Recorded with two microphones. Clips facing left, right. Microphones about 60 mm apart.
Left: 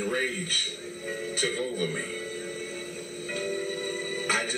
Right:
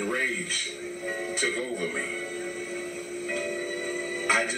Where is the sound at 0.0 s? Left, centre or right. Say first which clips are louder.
Right 1 dB; right.